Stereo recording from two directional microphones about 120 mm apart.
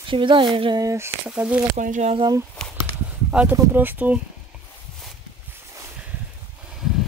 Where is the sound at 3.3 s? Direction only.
10° right (ahead or behind).